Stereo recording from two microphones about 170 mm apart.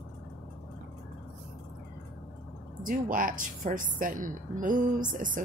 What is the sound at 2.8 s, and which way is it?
Speech, 55° right (ahead or behind).